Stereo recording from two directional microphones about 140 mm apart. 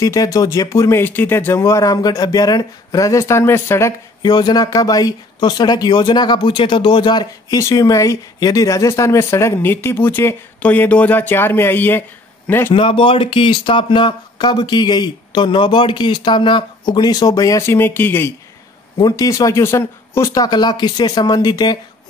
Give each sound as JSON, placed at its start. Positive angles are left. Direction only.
{"t": 0.0, "sound": "speech", "side_deg": 25}
{"t": 4.2, "sound": "a man's voice", "side_deg": 30}
{"t": 12.7, "sound": "speech", "side_deg": 35}
{"t": 18.9, "sound": "speech", "side_deg": 30}